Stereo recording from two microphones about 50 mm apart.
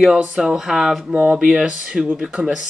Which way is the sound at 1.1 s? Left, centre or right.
Right.